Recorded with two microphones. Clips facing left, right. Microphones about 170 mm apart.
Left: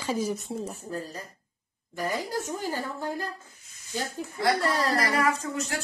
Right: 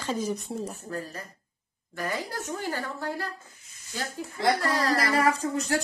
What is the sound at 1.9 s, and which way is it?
A woman's voice, 15° left (ahead or behind).